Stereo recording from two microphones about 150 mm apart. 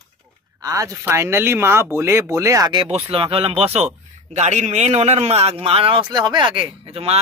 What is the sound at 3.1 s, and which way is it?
A man's voice, 40° right (ahead or behind).